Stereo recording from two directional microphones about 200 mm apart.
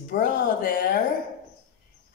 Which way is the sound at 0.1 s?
45° left (ahead or behind).